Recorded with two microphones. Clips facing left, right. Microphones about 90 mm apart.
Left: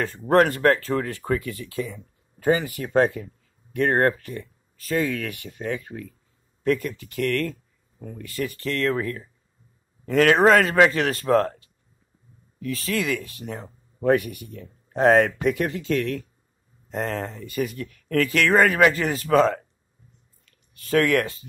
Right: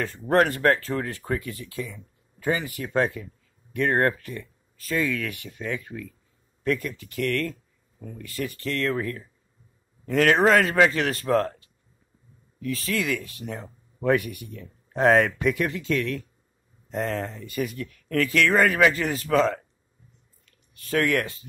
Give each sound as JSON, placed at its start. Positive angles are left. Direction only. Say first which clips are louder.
{"t": 0.3, "sound": "speech", "louder": "left 2 dB", "side_deg": 50}
{"t": 1.9, "sound": "speech", "louder": "left 4 dB", "side_deg": 45}
{"t": 12.6, "sound": "speech", "louder": "left 1 dB", "side_deg": 45}
{"t": 14.9, "sound": "speech", "louder": "left 2 dB", "side_deg": 25}
{"t": 20.9, "sound": "speech", "louder": "left 3 dB", "side_deg": 55}